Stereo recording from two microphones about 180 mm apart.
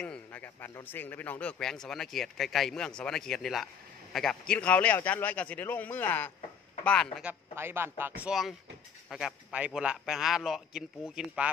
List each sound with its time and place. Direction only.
0.0 s a man's voice: 5° left (ahead or behind)
7.5 s a man's voice: 15° right (ahead or behind)